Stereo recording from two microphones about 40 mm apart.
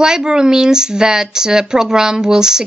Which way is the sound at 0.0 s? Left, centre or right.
Centre.